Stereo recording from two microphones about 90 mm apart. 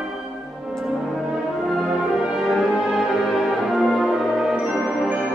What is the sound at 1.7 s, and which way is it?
Music, centre (ahead or behind).